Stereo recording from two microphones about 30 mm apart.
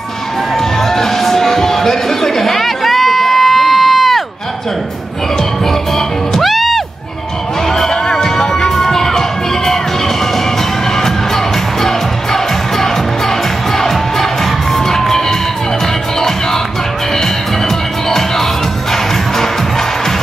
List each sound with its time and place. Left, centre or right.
0.6 s music: centre
5.7 s music: centre
6.4 s music: centre
7.6 s music: centre
7.9 s music: left
18.1 s music: centre